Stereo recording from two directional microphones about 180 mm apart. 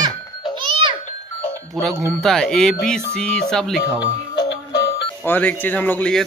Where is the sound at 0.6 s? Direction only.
25° right (ahead or behind).